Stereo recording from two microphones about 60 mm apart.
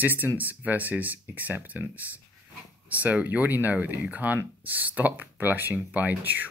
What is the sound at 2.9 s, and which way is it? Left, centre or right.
Speech, right.